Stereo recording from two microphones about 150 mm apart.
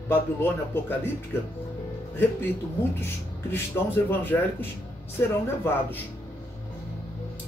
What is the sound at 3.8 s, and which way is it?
Speech, 20° left (ahead or behind).